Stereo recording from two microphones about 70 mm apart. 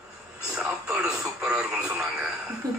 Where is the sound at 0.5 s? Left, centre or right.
Centre.